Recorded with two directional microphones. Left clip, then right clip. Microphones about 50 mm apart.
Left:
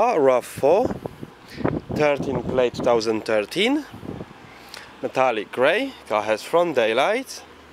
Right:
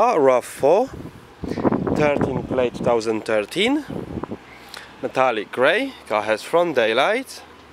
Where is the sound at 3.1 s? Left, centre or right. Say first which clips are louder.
Right 1 dB; centre.